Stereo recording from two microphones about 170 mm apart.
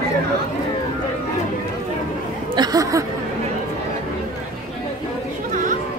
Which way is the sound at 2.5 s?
25° right (ahead or behind).